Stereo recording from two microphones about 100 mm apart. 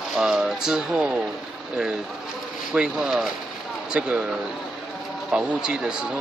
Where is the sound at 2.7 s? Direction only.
5° right (ahead or behind).